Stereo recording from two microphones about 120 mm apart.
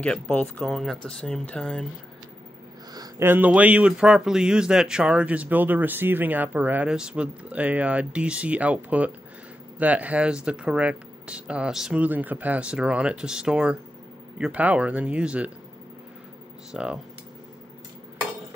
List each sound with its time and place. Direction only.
0.0 s speech: 10° left (ahead or behind)
2.9 s a sound: 35° right (ahead or behind)
3.3 s speech: 15° right (ahead or behind)
16.7 s speech: 5° right (ahead or behind)